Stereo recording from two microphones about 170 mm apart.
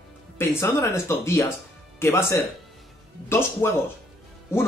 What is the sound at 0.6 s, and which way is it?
Speech, 15° left (ahead or behind).